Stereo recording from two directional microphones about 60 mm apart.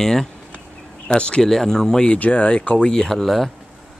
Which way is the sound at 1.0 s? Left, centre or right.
Centre.